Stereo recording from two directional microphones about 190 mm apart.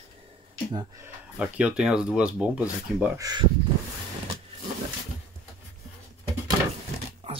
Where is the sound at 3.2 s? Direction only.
20° right (ahead or behind).